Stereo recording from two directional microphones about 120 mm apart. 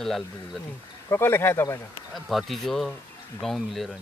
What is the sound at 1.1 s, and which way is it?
Speech, 20° left (ahead or behind).